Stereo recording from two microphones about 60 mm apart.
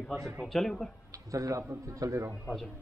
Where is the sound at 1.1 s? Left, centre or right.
Right.